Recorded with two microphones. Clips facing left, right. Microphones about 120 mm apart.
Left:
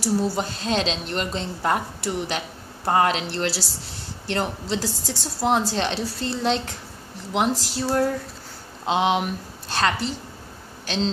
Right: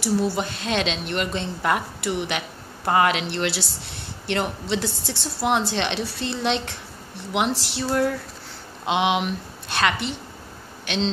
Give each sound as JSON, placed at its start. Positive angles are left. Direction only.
{"t": 0.4, "sound": "a woman's voice", "side_deg": 35}